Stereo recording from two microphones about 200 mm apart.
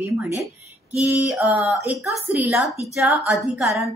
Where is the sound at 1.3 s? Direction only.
5° right (ahead or behind).